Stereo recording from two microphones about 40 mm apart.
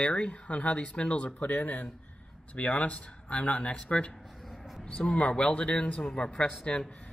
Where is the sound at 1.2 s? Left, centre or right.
Left.